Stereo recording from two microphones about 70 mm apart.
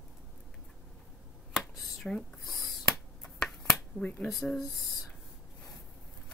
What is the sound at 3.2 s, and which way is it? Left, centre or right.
Finger snapping, centre.